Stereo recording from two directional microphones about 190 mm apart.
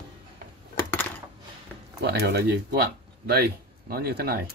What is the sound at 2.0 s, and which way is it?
Speech, 60° right (ahead or behind).